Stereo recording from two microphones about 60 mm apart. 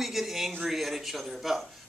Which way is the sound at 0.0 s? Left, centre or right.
Centre.